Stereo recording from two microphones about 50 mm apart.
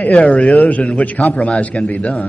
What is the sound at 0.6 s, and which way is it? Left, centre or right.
A man's voice, left.